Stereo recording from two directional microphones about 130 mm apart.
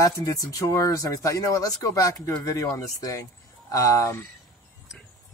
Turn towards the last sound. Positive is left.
turn(degrees=25)  # may be behind; listen again after turning